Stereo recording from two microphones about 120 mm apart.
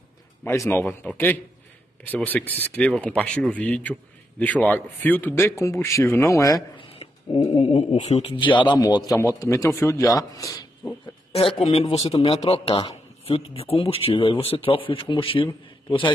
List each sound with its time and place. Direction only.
0.4 s a man's voice: 20° left (ahead or behind)
6.8 s a sound: 55° left (ahead or behind)
7.6 s a man's voice: 55° left (ahead or behind); by 10.6 s 30° left (ahead or behind)
11.7 s speech: 60° left (ahead or behind)